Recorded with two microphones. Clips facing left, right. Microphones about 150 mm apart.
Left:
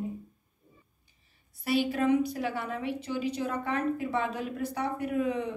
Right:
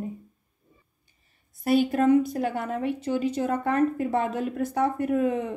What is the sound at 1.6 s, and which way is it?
A woman's voice, 50° right (ahead or behind).